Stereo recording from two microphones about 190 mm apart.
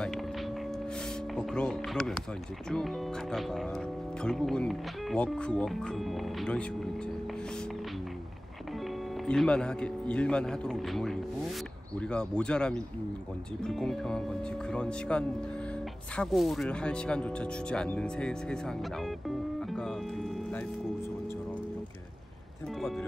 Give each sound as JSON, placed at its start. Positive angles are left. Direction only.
{"t": 1.3, "sound": "speech", "side_deg": 5}
{"t": 9.2, "sound": "speech", "side_deg": 5}
{"t": 19.2, "sound": "music", "side_deg": 0}